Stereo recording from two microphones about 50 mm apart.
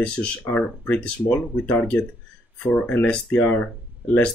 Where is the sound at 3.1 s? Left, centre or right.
Left.